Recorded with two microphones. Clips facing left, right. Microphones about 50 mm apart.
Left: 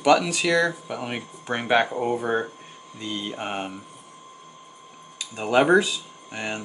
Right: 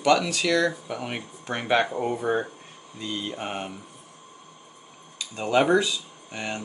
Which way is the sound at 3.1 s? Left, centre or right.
Centre.